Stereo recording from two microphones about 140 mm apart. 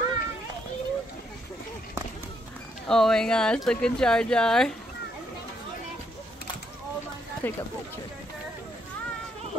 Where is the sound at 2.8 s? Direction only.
5° left (ahead or behind).